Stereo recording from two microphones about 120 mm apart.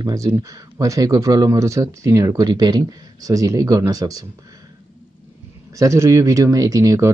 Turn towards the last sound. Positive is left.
turn(degrees=-30)  # may be behind; listen again after turning